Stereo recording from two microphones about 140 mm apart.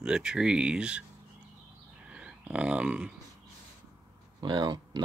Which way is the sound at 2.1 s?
5° right (ahead or behind).